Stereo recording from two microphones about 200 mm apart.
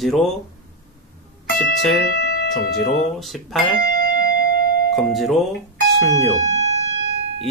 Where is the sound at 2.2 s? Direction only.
55° left (ahead or behind).